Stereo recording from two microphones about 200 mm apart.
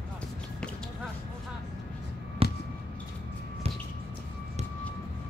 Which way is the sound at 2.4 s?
30° right (ahead or behind).